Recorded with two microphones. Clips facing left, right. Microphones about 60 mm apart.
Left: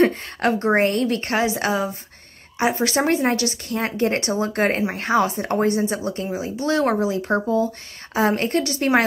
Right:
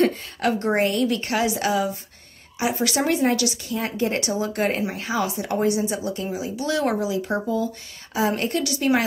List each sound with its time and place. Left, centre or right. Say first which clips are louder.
0.4 s speech: left 3 dB; left